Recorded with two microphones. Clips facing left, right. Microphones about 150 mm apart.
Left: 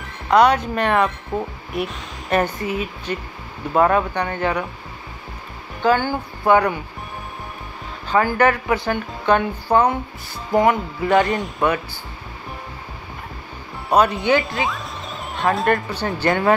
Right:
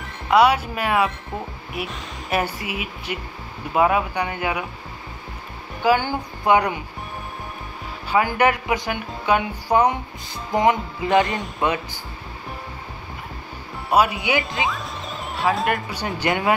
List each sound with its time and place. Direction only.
0.0 s speech: 5° right (ahead or behind)
5.8 s speech: 15° right (ahead or behind)
8.1 s speech: 15° right (ahead or behind)
10.5 s music: 20° right (ahead or behind)
11.2 s speech: centre (ahead or behind)
13.8 s speech: 5° right (ahead or behind)
14.6 s music: 20° right (ahead or behind)
15.3 s speech: centre (ahead or behind)
15.9 s speech: 15° right (ahead or behind)